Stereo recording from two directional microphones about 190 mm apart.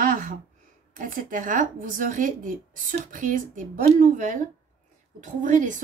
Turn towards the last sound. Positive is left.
turn(degrees=-40)  # may be behind; listen again after turning